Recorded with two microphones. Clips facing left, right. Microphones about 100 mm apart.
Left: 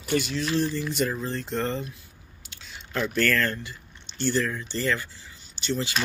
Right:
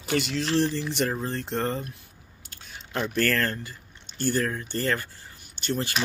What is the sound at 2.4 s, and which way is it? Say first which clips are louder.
Chewing: left 1 dB; 45° right (ahead or behind).